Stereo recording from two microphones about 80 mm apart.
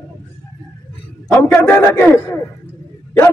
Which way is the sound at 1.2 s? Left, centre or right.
Centre.